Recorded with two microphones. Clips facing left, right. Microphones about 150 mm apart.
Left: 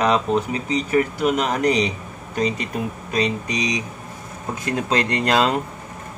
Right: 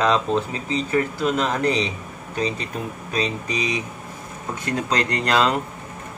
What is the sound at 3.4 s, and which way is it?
Speech, 30° right (ahead or behind).